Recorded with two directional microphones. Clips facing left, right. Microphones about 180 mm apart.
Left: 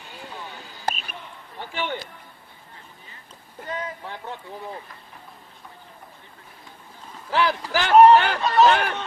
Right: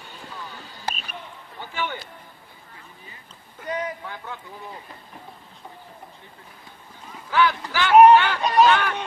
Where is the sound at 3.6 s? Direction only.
20° right (ahead or behind).